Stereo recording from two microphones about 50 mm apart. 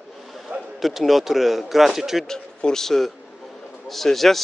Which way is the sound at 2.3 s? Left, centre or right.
Centre.